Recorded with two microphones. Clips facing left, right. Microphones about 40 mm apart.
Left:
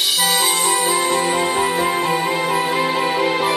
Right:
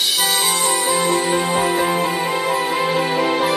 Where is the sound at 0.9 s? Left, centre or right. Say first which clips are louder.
Even; left.